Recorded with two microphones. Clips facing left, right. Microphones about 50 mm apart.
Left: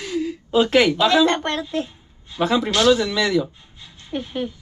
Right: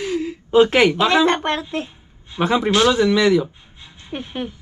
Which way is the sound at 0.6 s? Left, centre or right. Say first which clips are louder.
Right 1 dB; right.